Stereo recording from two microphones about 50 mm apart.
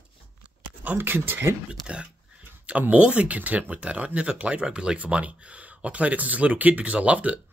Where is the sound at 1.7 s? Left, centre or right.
Right.